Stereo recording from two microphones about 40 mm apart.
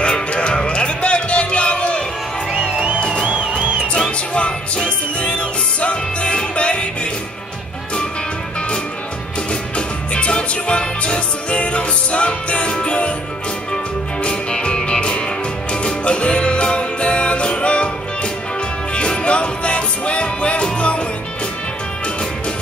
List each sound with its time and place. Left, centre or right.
0.0 s music: left
3.2 s music: right
4.3 s music: left
9.5 s music: left
14.2 s music: left
18.9 s music: left